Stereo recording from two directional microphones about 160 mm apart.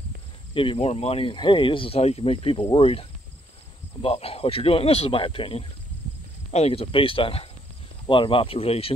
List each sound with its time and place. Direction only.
0.6 s speech: 35° left (ahead or behind)